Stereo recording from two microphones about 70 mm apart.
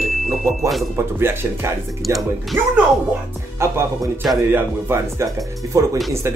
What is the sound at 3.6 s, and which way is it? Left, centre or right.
Speech, right.